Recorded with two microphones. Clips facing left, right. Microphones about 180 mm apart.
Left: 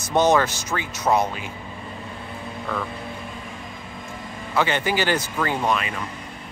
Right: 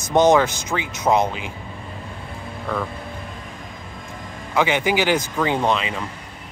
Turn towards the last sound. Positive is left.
turn(degrees=-20)  # may be behind; listen again after turning